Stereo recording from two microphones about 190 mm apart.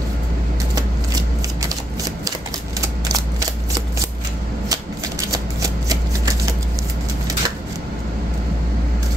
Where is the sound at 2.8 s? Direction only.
20° right (ahead or behind).